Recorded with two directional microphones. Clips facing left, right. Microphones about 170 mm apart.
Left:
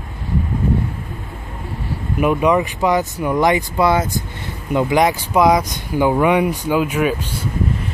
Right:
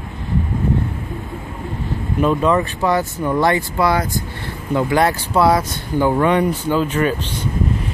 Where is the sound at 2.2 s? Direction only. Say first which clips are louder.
Left 1 dB; 15° left (ahead or behind).